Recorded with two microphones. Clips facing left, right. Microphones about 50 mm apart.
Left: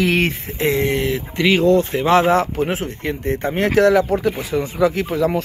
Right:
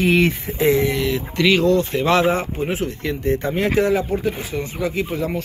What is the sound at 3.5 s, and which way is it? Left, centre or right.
Speech, left.